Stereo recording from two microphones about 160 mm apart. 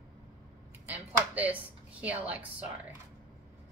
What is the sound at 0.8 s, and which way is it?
Speech, 10° right (ahead or behind).